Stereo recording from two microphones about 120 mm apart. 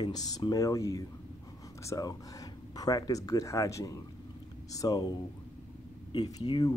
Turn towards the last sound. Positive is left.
turn(degrees=35)  # may be behind; listen again after turning